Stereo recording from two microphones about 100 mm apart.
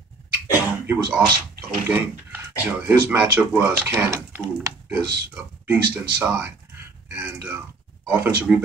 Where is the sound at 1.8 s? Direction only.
20° right (ahead or behind).